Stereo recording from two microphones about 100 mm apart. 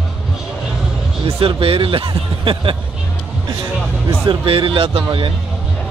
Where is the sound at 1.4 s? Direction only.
70° right (ahead or behind).